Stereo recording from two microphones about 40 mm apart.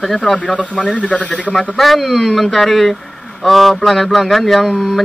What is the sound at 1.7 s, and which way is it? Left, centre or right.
A man's voice, centre.